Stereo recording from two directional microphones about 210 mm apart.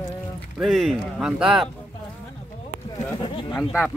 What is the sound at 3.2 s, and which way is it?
Speech, 20° left (ahead or behind).